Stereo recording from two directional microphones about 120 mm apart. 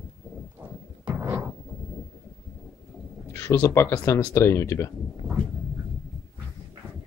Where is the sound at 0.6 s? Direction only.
15° right (ahead or behind).